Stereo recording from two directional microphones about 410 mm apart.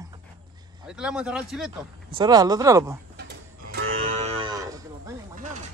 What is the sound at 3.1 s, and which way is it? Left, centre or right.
Cattle, right.